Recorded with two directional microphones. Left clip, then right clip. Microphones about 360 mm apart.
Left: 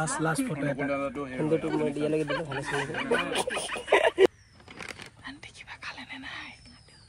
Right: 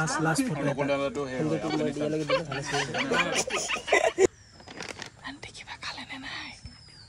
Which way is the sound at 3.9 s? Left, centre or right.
Centre.